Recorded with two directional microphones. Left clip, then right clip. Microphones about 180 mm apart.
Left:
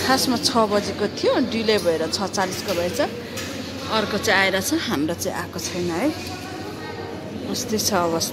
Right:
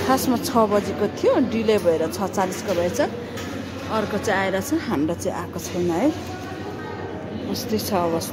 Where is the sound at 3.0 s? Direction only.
10° right (ahead or behind).